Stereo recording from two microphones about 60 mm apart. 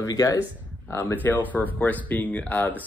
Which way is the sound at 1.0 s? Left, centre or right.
Left.